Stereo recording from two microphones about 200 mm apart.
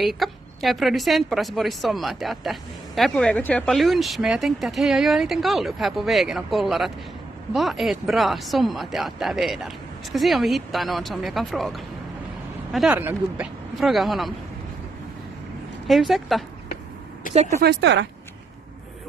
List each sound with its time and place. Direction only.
0.0 s a woman's voice: centre (ahead or behind)
15.9 s a woman's voice: centre (ahead or behind)
17.3 s speech: 35° right (ahead or behind)
17.6 s speech: 55° right (ahead or behind)